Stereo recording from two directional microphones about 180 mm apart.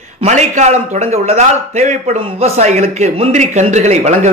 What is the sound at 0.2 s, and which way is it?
A man's voice, 40° right (ahead or behind).